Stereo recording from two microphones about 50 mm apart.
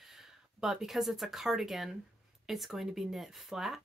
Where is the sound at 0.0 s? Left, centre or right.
Centre.